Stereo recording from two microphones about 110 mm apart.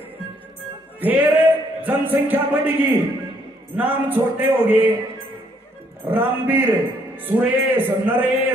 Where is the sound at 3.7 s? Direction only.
15° right (ahead or behind).